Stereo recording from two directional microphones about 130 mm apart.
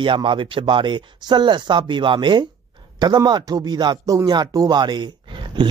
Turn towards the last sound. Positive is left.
turn(degrees=-40)  # may be behind; listen again after turning